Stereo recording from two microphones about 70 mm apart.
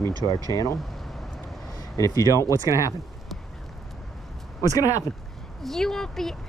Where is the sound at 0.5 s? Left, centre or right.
Left.